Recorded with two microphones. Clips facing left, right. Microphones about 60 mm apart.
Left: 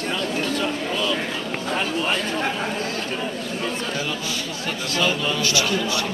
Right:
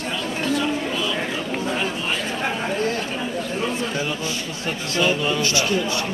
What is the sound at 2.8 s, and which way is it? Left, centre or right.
Chatter, right.